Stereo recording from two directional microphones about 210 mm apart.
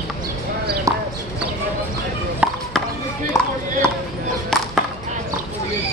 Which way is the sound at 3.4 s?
15° left (ahead or behind).